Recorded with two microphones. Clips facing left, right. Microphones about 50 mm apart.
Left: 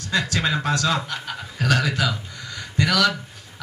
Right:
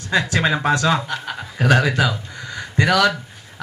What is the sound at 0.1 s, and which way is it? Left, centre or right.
Speech, right.